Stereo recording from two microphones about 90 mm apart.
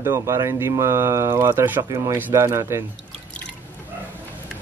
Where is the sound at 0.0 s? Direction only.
30° right (ahead or behind).